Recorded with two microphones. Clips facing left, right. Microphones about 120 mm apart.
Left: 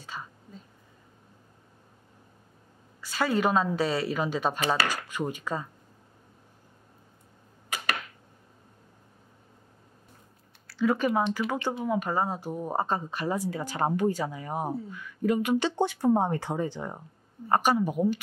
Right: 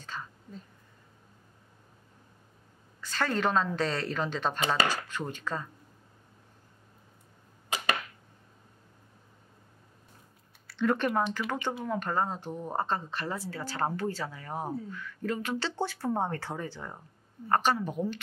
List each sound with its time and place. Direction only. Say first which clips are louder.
0.0 s whispering: left 1 dB; 10° left (ahead or behind)
3.0 s a woman's voice: left 3 dB; 10° left (ahead or behind)
10.7 s a woman's voice: left 2 dB; 5° left (ahead or behind)